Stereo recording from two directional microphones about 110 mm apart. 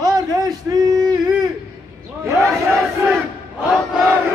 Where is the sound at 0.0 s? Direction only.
35° right (ahead or behind).